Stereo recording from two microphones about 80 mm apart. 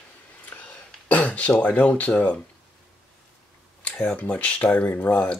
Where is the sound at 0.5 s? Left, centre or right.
Left.